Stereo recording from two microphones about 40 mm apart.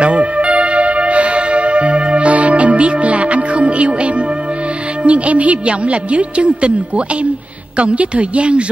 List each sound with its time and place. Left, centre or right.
0.0 s music: right
5.0 s speech: right
7.7 s a woman's voice: right